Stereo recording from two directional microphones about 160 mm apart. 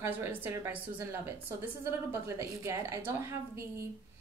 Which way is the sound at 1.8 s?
15° right (ahead or behind).